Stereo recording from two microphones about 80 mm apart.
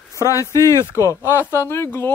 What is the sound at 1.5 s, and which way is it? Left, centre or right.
Speech, left.